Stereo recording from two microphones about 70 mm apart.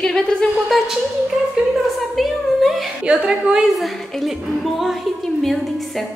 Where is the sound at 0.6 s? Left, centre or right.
Centre.